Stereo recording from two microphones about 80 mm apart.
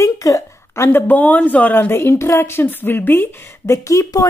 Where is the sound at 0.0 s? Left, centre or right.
Left.